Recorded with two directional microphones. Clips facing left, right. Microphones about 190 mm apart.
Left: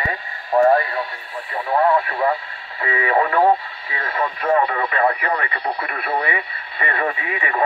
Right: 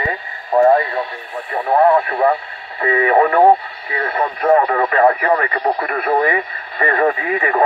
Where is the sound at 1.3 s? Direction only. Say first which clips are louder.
Right 5 dB; 45° right (ahead or behind).